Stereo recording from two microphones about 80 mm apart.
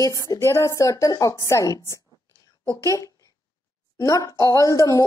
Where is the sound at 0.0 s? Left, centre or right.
Left.